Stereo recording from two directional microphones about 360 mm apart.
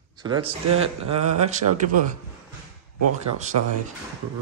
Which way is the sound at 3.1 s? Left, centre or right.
Centre.